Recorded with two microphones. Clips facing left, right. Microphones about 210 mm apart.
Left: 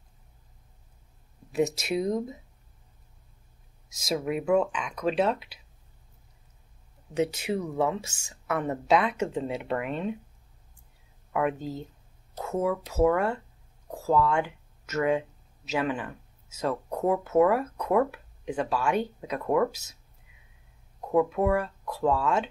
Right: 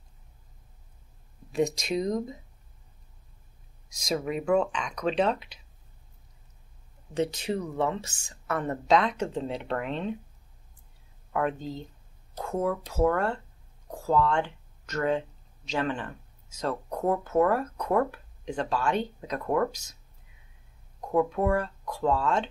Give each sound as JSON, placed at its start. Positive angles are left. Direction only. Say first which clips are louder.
{"t": 1.5, "sound": "speech", "louder": "even", "side_deg": 5}
{"t": 3.9, "sound": "speech", "louder": "left 1 dB", "side_deg": 0}
{"t": 7.2, "sound": "speech", "louder": "left 1 dB", "side_deg": 10}
{"t": 11.3, "sound": "speech", "louder": "left 1 dB", "side_deg": 5}
{"t": 21.1, "sound": "speech", "louder": "left 1 dB", "side_deg": 5}